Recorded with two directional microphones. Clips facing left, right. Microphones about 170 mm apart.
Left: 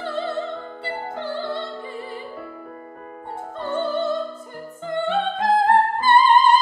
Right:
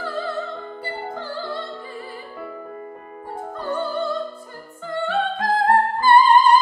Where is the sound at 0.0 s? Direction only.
25° left (ahead or behind).